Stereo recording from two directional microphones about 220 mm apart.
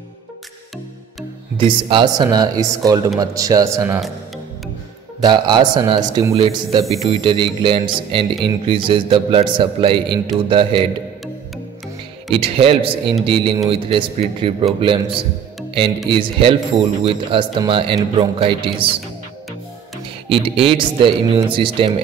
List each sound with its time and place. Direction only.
1.6 s speech: 25° right (ahead or behind)
5.2 s speech: 20° right (ahead or behind)
12.3 s speech: 25° right (ahead or behind)
20.2 s speech: 25° right (ahead or behind)